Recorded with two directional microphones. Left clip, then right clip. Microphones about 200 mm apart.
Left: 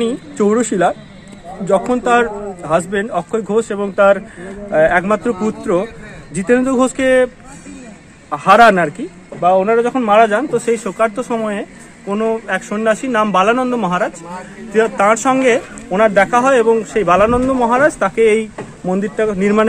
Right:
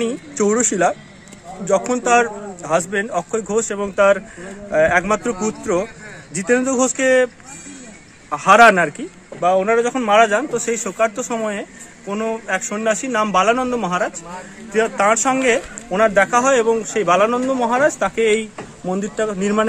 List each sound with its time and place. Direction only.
0.0 s a man's voice: 5° right (ahead or behind)
8.3 s a man's voice: 5° right (ahead or behind)